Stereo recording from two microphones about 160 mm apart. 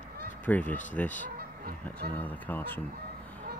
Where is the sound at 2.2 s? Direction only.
10° left (ahead or behind).